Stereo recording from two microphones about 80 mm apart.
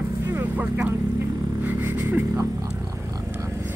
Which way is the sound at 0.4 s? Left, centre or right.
Centre.